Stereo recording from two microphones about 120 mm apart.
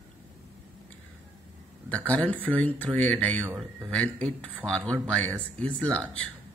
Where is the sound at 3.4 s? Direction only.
15° right (ahead or behind).